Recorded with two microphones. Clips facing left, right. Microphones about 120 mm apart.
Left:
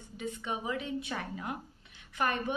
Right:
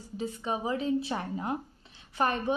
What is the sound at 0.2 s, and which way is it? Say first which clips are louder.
A woman's voice: right 4 dB; 35° right (ahead or behind).